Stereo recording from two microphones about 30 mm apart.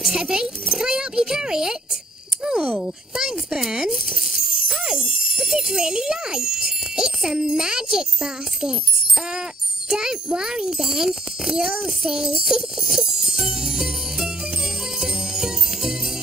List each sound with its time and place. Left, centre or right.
0.1 s a child's voice: right
2.4 s cricket: right
3.2 s a child's voice: right
4.2 s a sound: centre
5.4 s a child's voice: centre
9.8 s a child's voice: right
10.8 s speech: centre
11.5 s a child's voice: right
13.2 s music: centre